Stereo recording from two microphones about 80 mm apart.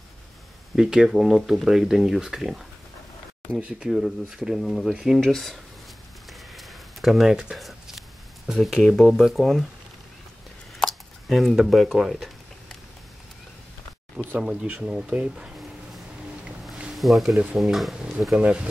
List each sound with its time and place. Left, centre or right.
0.7 s speech: centre
6.5 s a sound: centre
9.0 s speech: centre
10.8 s a sound: centre
14.1 s speech: centre
16.9 s speech: centre
18.3 s speech: centre